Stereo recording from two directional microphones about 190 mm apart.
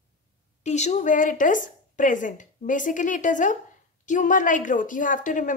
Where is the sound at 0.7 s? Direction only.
35° left (ahead or behind).